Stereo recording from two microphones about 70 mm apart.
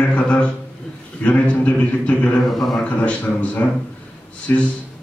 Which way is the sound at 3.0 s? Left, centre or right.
Left.